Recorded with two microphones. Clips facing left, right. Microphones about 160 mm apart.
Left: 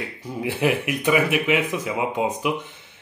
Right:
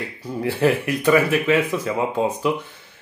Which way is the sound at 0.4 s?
15° left (ahead or behind).